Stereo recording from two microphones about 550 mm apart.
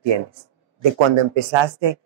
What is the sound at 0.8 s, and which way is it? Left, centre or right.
Speech, right.